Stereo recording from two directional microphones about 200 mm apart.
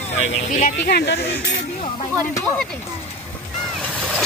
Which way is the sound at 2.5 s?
5° left (ahead or behind).